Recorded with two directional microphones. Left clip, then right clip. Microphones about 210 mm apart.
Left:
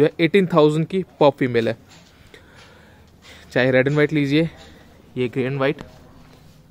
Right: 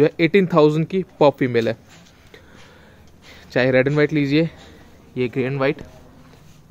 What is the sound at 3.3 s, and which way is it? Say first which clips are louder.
A man's voice: even; centre (ahead or behind).